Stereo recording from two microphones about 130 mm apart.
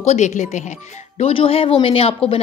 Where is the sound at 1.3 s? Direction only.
45° left (ahead or behind).